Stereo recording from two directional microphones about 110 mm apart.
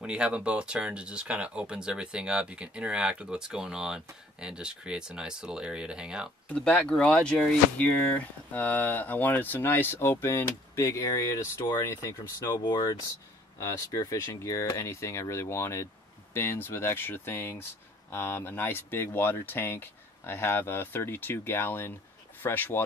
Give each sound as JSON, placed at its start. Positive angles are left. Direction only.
{"t": 0.0, "sound": "speech", "side_deg": -10}
{"t": 6.5, "sound": "speech", "side_deg": 10}